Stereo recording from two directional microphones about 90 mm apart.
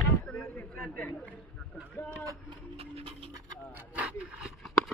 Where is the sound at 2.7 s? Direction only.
90° right.